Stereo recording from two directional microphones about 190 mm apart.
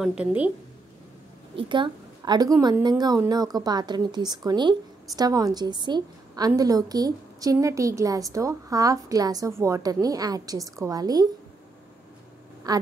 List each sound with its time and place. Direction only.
0.0 s a woman's voice: 5° right (ahead or behind)
1.6 s a woman's voice: 25° right (ahead or behind)
12.7 s a woman's voice: 20° right (ahead or behind)